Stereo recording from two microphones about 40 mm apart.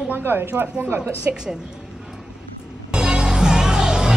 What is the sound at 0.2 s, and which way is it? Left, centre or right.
A woman's voice, right.